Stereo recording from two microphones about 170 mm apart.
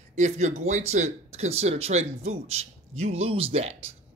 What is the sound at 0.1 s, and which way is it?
Speech, 40° right (ahead or behind).